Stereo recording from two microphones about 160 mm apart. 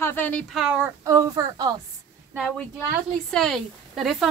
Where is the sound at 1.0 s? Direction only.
20° right (ahead or behind).